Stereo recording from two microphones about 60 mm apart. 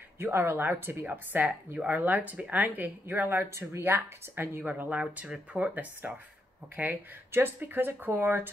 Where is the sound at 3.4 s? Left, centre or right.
Right.